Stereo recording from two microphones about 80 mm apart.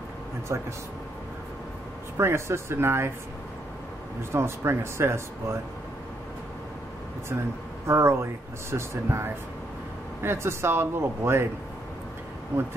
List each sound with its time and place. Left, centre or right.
0.5 s speech: right
2.1 s speech: right
4.3 s speech: right
7.8 s speech: right